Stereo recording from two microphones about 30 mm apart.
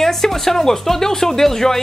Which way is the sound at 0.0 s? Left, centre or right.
Centre.